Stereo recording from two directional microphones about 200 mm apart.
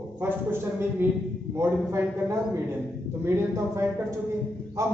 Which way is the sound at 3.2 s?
15° right (ahead or behind).